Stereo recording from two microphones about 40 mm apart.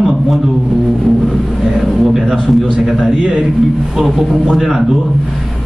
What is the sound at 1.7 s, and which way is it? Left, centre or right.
A man's voice, centre.